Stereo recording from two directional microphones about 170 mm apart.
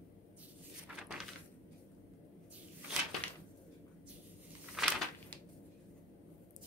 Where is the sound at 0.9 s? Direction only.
5° right (ahead or behind).